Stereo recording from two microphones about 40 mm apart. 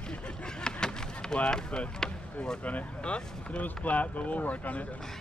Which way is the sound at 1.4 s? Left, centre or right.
Centre.